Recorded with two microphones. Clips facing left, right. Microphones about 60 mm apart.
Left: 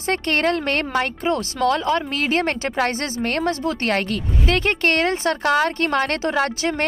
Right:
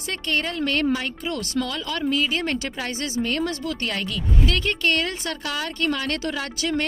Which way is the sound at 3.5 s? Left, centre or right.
Left.